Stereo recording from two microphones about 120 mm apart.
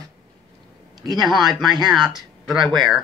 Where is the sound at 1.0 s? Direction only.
35° right (ahead or behind).